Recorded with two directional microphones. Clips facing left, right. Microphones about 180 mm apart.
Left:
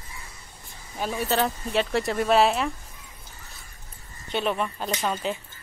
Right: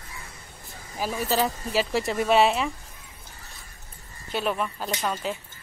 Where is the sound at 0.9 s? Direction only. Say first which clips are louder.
Even; 5° right (ahead or behind).